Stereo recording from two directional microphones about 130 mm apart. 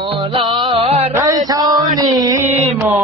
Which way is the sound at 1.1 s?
25° right (ahead or behind).